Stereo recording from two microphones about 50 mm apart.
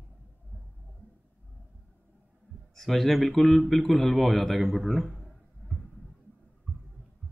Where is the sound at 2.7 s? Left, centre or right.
Centre.